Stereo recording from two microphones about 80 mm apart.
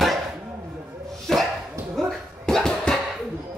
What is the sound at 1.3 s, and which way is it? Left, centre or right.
Dog, centre.